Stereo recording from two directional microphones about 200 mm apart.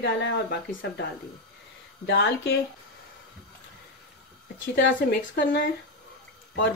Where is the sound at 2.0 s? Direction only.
60° left (ahead or behind).